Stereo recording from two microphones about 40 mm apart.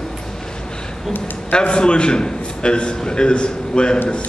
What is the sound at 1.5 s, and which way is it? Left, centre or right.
A man's voice, left.